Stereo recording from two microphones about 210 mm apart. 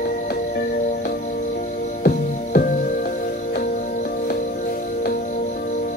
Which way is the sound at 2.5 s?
45° left (ahead or behind).